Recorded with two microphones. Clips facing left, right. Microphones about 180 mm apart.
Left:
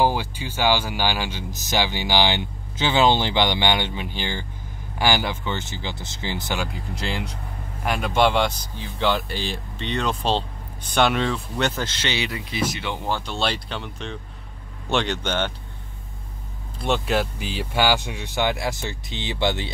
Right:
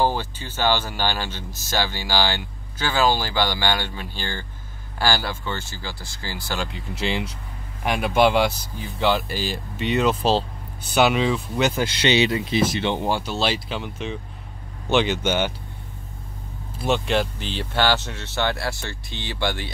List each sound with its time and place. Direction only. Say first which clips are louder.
0.0 s speech: left 1 dB; 10° left (ahead or behind)
7.0 s speech: right 4 dB; centre (ahead or behind); by 13.1 s 25° right (ahead or behind)
13.1 s speech: right 2 dB; 5° right (ahead or behind)
16.7 s speech: right 1 dB; centre (ahead or behind); by 19.7 s 20° left (ahead or behind)